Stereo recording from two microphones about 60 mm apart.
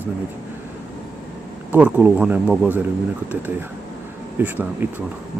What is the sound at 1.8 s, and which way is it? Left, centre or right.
A man's voice, right.